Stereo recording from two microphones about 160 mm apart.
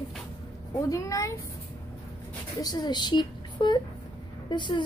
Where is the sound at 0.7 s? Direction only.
20° left (ahead or behind).